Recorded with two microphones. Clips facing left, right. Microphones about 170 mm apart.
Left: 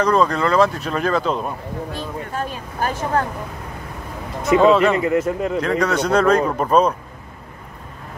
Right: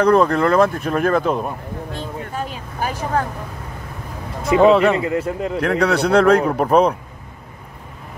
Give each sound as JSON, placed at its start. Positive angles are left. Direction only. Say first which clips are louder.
{"t": 0.0, "sound": "speech", "louder": "right 3 dB", "side_deg": -60}
{"t": 1.2, "sound": "speech", "louder": "right 2 dB", "side_deg": -10}
{"t": 4.6, "sound": "a man's voice", "louder": "right 2 dB", "side_deg": -25}
{"t": 5.6, "sound": "a man's voice", "louder": "right 5 dB", "side_deg": -65}